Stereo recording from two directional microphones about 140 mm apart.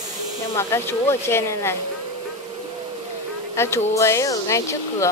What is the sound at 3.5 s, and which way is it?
Speech, 20° left (ahead or behind).